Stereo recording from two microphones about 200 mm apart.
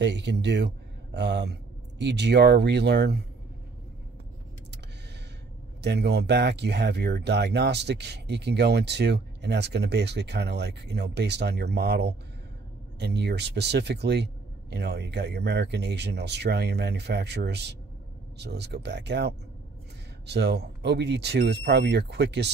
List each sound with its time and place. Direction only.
0.0 s speech: 60° right (ahead or behind)
5.8 s speech: 55° right (ahead or behind)